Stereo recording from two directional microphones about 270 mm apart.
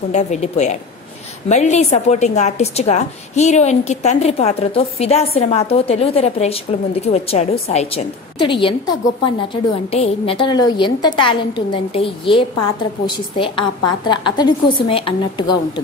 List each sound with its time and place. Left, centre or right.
0.1 s a woman's voice: left